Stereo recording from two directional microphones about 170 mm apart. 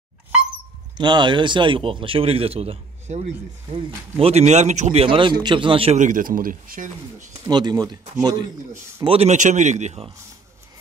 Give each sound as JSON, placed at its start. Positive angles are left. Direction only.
{"t": 0.9, "sound": "a man's voice", "side_deg": -25}
{"t": 5.9, "sound": "speech", "side_deg": -50}
{"t": 7.4, "sound": "a man's voice", "side_deg": -25}
{"t": 9.0, "sound": "a man's voice", "side_deg": -35}